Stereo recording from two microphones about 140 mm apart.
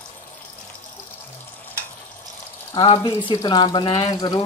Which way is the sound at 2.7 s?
40° left (ahead or behind).